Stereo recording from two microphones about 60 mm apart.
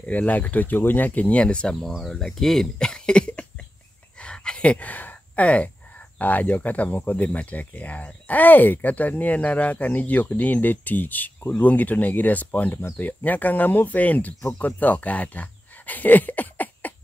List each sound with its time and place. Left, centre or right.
0.0 s speech: left
1.8 s speech: centre
4.2 s a sound: centre
6.1 s speech: left